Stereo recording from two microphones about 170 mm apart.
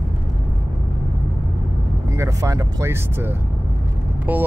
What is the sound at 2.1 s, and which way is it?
Vehicle, 15° right (ahead or behind).